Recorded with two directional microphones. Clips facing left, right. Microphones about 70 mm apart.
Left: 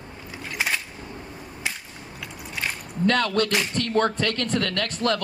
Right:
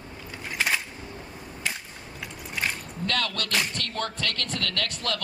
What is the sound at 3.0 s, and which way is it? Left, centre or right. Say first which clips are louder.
Speech: left 9 dB; left.